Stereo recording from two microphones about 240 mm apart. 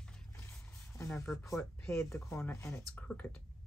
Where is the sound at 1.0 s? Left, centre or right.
Centre.